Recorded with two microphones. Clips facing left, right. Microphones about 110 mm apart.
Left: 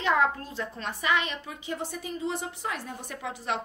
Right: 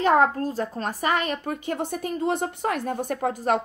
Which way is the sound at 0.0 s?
45° right (ahead or behind).